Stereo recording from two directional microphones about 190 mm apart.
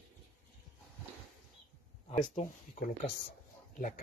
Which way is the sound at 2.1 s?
40° left (ahead or behind).